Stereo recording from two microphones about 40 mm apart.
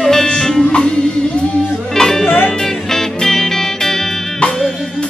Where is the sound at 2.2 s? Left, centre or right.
Left.